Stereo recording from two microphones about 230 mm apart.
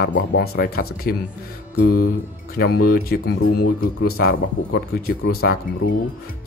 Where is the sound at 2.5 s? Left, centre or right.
Left.